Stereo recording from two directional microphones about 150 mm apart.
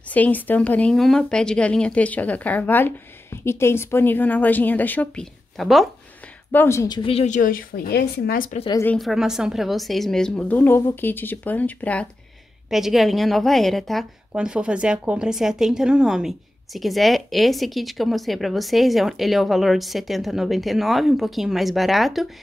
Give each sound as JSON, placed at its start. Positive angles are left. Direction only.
{"t": 0.1, "sound": "speech", "side_deg": 10}
{"t": 6.5, "sound": "a woman's voice", "side_deg": 15}
{"t": 7.1, "sound": "a woman's voice", "side_deg": 50}
{"t": 8.8, "sound": "a woman's voice", "side_deg": 0}
{"t": 12.6, "sound": "a woman's voice", "side_deg": 0}